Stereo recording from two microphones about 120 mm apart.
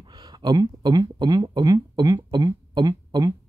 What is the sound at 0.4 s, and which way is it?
Speech, 35° right (ahead or behind).